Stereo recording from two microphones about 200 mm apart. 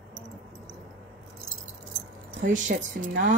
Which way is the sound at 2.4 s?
40° right (ahead or behind).